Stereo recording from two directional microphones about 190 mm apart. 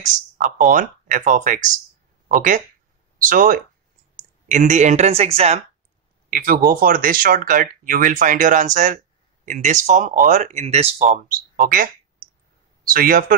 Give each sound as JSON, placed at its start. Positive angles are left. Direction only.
{"t": 0.0, "sound": "speech", "side_deg": -40}
{"t": 6.3, "sound": "speech", "side_deg": -50}
{"t": 11.5, "sound": "speech", "side_deg": -50}